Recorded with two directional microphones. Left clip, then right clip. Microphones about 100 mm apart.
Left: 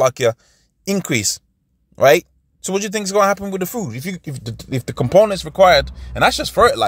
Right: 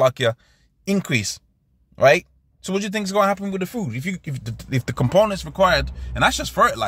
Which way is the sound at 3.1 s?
50° left (ahead or behind).